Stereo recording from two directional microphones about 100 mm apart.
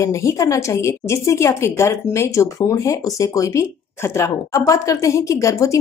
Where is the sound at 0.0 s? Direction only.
30° left (ahead or behind).